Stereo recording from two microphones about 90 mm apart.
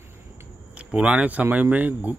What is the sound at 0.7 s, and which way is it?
Speech, 15° right (ahead or behind).